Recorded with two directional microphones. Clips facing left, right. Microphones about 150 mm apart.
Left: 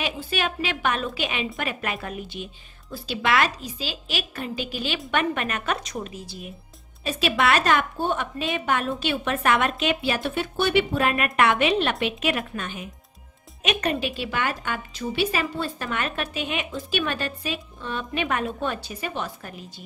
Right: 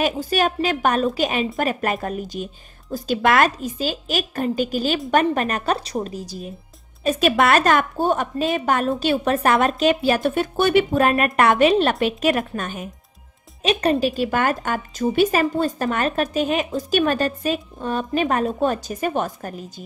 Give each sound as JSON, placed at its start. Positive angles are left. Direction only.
{"t": 0.0, "sound": "a woman's voice", "side_deg": -40}
{"t": 13.6, "sound": "a woman's voice", "side_deg": -35}